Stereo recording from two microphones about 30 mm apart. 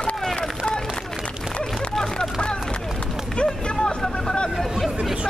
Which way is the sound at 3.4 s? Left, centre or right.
Left.